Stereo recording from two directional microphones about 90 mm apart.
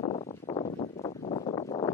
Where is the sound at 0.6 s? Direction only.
45° left (ahead or behind).